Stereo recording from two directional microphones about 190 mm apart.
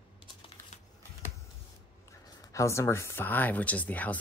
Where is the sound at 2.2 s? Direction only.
20° left (ahead or behind).